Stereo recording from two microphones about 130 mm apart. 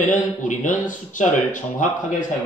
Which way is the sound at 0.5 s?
80° left.